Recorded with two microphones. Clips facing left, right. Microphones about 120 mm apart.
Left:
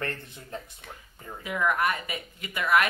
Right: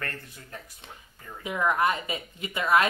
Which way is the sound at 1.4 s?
20° right (ahead or behind).